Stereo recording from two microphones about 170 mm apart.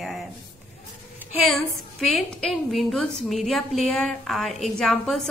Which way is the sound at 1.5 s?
Centre (ahead or behind).